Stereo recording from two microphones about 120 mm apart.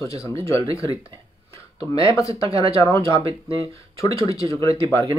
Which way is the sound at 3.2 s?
55° right (ahead or behind).